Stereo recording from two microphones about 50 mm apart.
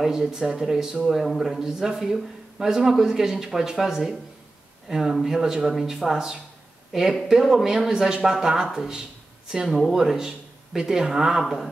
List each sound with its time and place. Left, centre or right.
0.0 s speech: centre